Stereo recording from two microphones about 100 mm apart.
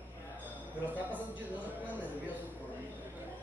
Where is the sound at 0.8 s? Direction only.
15° right (ahead or behind).